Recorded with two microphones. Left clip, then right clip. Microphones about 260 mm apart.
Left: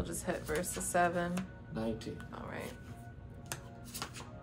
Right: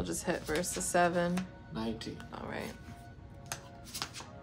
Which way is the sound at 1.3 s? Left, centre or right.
Centre.